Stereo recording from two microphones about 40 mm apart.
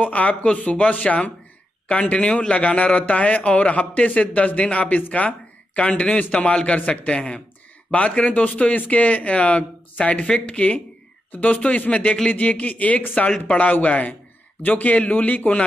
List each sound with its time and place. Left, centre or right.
0.0 s a man's voice: left